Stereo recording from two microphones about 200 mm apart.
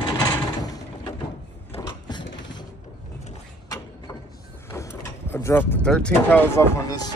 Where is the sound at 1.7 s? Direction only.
25° left (ahead or behind).